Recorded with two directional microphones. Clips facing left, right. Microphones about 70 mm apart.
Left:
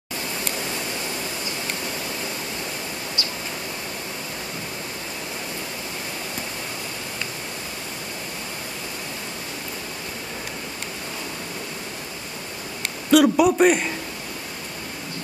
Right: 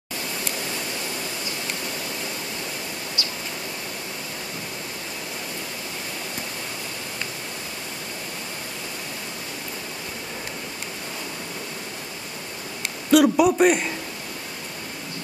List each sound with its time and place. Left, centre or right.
3.2 s pink noise: left
12.8 s a man's voice: centre